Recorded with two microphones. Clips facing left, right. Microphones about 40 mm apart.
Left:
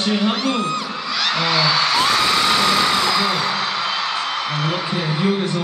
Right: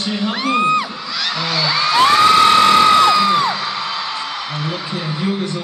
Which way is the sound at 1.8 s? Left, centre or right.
Right.